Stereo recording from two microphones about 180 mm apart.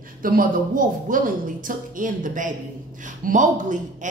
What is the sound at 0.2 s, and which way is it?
A woman's voice, 50° right (ahead or behind).